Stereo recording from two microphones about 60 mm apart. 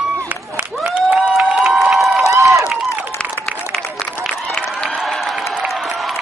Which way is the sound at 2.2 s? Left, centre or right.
Right.